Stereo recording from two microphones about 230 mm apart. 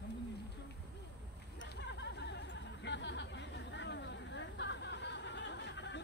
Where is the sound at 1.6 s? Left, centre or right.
Left.